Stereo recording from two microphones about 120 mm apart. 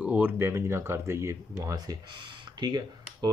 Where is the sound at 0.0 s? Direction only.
15° right (ahead or behind).